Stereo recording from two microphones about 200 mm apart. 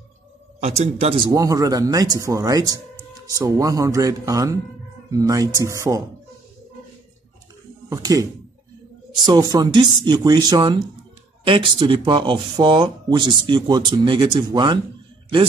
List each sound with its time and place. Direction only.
0.6 s speech: 30° right (ahead or behind); by 6.0 s 15° right (ahead or behind)
7.9 s speech: 15° right (ahead or behind)